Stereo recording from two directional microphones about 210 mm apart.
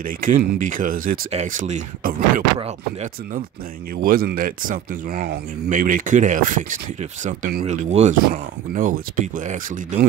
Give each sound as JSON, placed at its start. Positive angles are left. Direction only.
{"t": 0.0, "sound": "speech", "side_deg": -40}
{"t": 4.0, "sound": "speech", "side_deg": -45}